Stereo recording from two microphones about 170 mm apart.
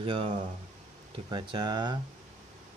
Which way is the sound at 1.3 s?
25° right (ahead or behind).